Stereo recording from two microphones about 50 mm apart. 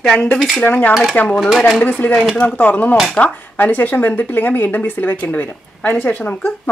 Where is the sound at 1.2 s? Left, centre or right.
Left.